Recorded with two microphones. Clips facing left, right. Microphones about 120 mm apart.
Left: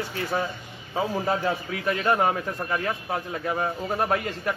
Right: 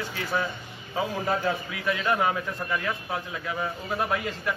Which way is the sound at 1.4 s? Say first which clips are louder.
Left 1 dB; 45° left (ahead or behind).